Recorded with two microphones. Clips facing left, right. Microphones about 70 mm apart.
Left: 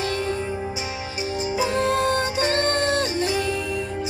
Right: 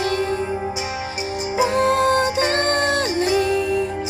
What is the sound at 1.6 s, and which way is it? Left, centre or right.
Music, right.